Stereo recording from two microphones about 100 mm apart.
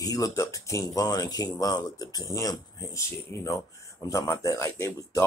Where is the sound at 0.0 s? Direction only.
35° left (ahead or behind).